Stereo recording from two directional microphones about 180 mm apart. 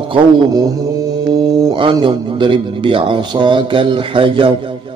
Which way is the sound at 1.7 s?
25° right (ahead or behind).